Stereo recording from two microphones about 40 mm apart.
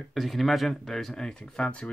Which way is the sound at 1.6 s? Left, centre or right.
Left.